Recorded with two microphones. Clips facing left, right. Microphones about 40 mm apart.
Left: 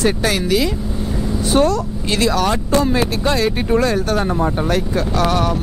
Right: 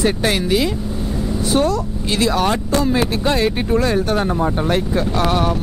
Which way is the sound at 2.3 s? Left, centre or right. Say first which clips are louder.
Left 1 dB; right.